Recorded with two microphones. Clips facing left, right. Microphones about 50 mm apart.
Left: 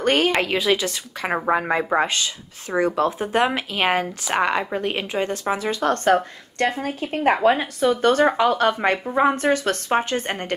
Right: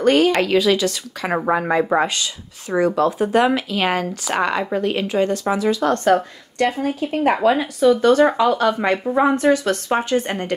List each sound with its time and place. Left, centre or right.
0.0 s speech: left
0.4 s speech: left